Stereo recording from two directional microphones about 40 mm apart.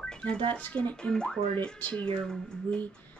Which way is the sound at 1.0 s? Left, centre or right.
Left.